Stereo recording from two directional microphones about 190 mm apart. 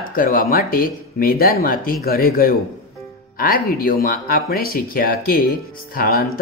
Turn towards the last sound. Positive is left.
turn(degrees=55)  # may be behind; listen again after turning